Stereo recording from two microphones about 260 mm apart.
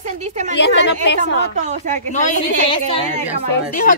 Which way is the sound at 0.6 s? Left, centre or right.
Left.